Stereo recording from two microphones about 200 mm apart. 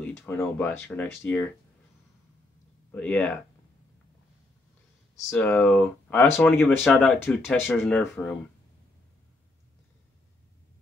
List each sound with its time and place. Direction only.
0.0 s speech: 10° left (ahead or behind)
2.9 s speech: 5° left (ahead or behind)
5.3 s speech: 10° left (ahead or behind)